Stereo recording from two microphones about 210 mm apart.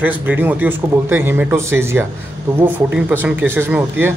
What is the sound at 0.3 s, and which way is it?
Speech, 10° right (ahead or behind).